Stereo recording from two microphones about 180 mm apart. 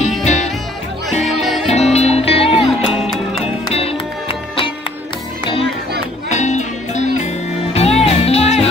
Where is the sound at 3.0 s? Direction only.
Centre (ahead or behind).